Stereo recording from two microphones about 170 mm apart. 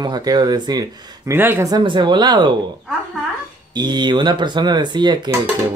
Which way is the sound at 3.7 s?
25° right (ahead or behind).